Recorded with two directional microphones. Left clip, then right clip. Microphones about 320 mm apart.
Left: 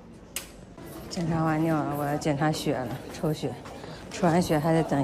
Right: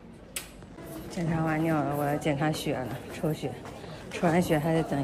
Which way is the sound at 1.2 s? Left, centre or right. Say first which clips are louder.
Left 2 dB; centre.